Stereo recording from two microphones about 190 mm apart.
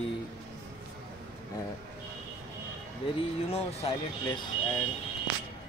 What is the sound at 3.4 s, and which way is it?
Speech, 30° left (ahead or behind).